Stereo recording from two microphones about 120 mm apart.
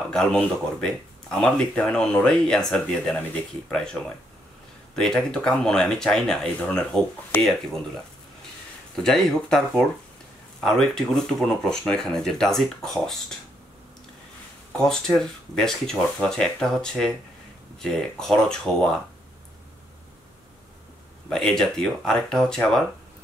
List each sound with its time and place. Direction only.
0.1 s speech: 5° left (ahead or behind)
4.9 s speech: 5° left (ahead or behind)
8.9 s speech: centre (ahead or behind)
14.8 s speech: 5° left (ahead or behind)
21.3 s speech: 5° left (ahead or behind)